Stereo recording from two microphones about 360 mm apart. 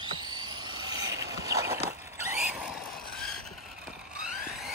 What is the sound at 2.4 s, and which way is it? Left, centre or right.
Vehicle, centre.